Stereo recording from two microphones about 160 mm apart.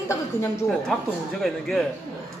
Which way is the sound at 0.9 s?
Centre (ahead or behind).